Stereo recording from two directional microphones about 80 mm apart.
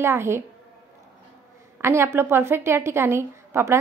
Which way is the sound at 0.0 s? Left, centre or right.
Right.